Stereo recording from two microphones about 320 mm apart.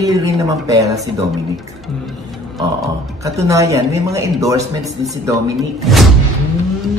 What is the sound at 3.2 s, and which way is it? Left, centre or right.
A woman's voice, centre.